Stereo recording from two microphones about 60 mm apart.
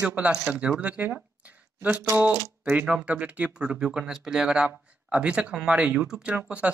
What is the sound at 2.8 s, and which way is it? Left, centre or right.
Speech, right.